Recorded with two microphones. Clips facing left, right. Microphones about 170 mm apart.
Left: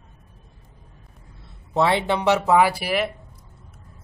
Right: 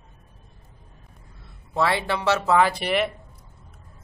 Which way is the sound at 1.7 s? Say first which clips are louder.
Left 3 dB; 20° left (ahead or behind).